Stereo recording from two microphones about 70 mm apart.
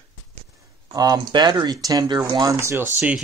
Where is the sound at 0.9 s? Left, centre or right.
Right.